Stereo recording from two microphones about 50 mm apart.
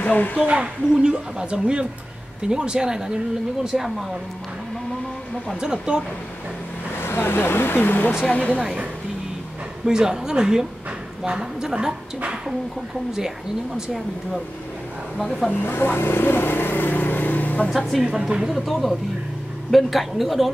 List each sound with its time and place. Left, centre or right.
0.0 s speech: left
0.5 s a woman's voice: centre
5.6 s a woman's voice: centre
7.0 s speech: left
8.3 s speech: left
9.8 s a woman's voice: centre
15.1 s a woman's voice: centre
15.6 s vehicle: left
18.0 s a woman's voice: centre
18.7 s a woman's voice: centre